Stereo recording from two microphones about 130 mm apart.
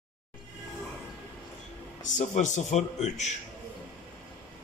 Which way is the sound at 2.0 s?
70° left (ahead or behind).